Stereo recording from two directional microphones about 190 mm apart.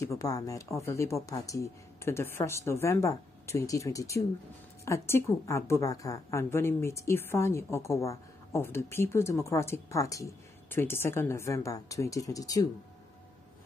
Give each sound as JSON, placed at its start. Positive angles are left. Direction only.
{"t": 0.0, "sound": "a woman's voice", "side_deg": 15}